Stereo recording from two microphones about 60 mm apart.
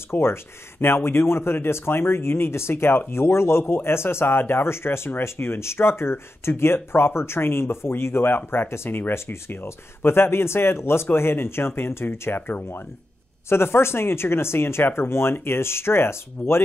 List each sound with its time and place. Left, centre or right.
0.1 s speech: left